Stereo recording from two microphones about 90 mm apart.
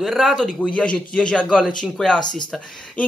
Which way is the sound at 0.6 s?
10° left (ahead or behind).